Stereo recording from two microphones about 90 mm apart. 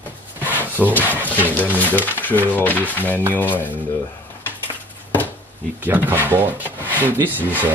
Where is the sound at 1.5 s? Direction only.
20° left (ahead or behind).